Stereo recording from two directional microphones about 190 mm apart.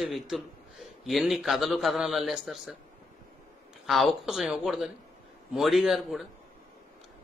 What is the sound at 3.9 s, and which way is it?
Speech, centre (ahead or behind).